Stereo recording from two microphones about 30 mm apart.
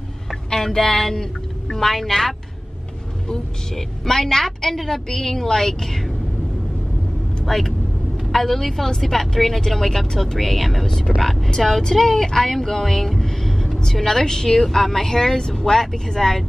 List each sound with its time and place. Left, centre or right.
0.7 s speech: centre
3.7 s a woman's voice: centre
7.4 s a woman's voice: centre
13.2 s vehicle: centre
14.0 s a woman's voice: centre